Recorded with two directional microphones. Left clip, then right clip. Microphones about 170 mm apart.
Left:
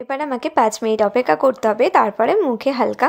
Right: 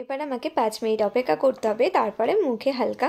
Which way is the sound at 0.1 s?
20° left (ahead or behind).